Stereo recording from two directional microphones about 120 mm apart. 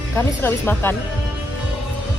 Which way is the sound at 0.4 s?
15° left (ahead or behind).